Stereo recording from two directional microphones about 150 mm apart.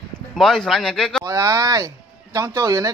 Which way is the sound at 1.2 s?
20° right (ahead or behind).